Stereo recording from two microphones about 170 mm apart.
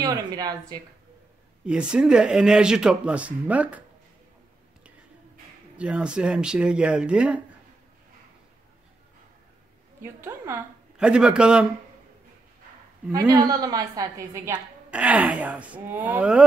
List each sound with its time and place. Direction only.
0.0 s speech: 20° right (ahead or behind)
1.7 s speech: 5° right (ahead or behind)
5.8 s speech: 5° right (ahead or behind)
10.2 s speech: 15° right (ahead or behind)
13.1 s a woman's voice: 20° right (ahead or behind)